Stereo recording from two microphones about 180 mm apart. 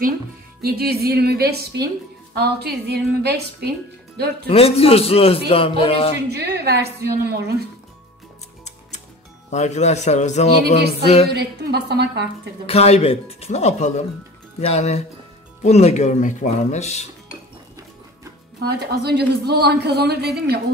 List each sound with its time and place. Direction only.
0.6 s a woman's voice: 60° right (ahead or behind)
4.5 s speech: 35° left (ahead or behind)
6.3 s a woman's voice: 65° right (ahead or behind)
9.5 s speech: 40° left (ahead or behind)
11.3 s a woman's voice: 65° right (ahead or behind)
12.6 s speech: 35° left (ahead or behind)
18.6 s a woman's voice: 60° right (ahead or behind)